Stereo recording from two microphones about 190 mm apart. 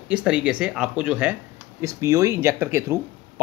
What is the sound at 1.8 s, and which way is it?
Speech, 15° right (ahead or behind).